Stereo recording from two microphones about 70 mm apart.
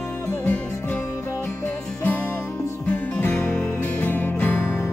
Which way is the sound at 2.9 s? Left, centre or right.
Left.